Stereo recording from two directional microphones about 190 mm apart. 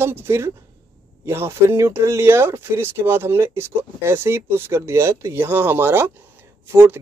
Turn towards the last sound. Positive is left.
turn(degrees=-15)  # may be behind; listen again after turning